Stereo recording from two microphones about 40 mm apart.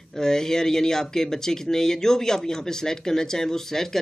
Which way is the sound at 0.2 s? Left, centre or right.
Centre.